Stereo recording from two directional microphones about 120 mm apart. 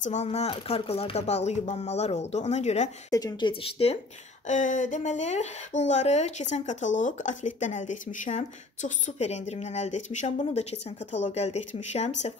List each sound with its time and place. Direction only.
0.0 s speech: 70° left (ahead or behind)
3.1 s speech: 30° left (ahead or behind)
4.5 s speech: 90° left; by 12.4 s 65° left (ahead or behind)